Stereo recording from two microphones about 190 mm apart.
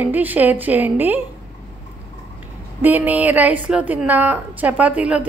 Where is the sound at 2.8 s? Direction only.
10° right (ahead or behind).